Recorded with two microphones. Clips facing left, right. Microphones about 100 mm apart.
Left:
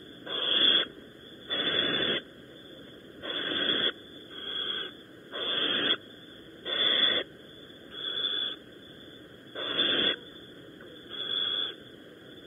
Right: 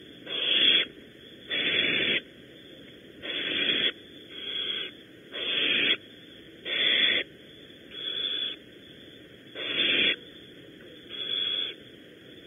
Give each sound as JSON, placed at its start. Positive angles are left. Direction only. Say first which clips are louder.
{"t": 0.2, "sound": "owl", "louder": "even", "side_deg": 25}
{"t": 1.5, "sound": "radio", "louder": "even", "side_deg": 25}
{"t": 4.4, "sound": "owl", "louder": "left 1 dB", "side_deg": 25}
{"t": 8.0, "sound": "a sound", "louder": "left 1 dB", "side_deg": 25}
{"t": 9.5, "sound": "owl", "louder": "left 1 dB", "side_deg": 25}
{"t": 11.1, "sound": "a sound", "louder": "left 1 dB", "side_deg": 25}